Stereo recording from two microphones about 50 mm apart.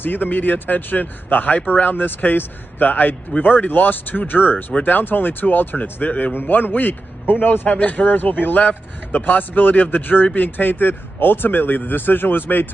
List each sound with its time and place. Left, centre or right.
0.0 s speech: left